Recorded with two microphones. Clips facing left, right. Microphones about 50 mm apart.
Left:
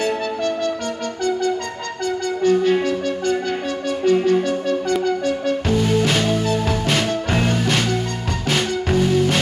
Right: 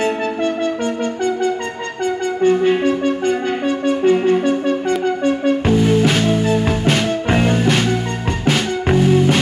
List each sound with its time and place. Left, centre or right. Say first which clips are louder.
2.4 s music: right 3 dB; right
5.0 s brass instrument: right 3 dB; right
5.7 s music: right 3 dB; centre